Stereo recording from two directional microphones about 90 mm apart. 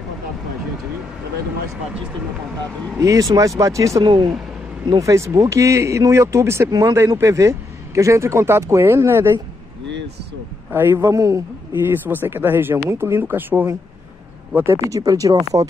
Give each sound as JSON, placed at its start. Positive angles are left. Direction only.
{"t": 3.0, "sound": "a man's voice", "side_deg": -40}
{"t": 4.0, "sound": "speech", "side_deg": -60}
{"t": 4.8, "sound": "a man's voice", "side_deg": -40}
{"t": 10.7, "sound": "a man's voice", "side_deg": -25}
{"t": 11.9, "sound": "speech", "side_deg": -25}
{"t": 14.9, "sound": "a man's voice", "side_deg": -40}